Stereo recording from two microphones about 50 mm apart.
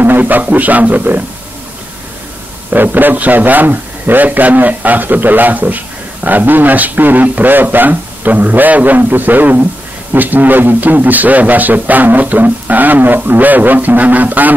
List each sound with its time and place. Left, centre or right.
0.0 s a man's voice: right
2.7 s a man's voice: right